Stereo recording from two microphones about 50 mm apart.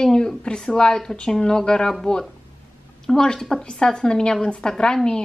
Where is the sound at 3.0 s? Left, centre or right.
Centre.